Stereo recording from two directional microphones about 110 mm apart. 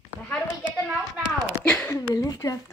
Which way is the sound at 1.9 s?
35° left (ahead or behind).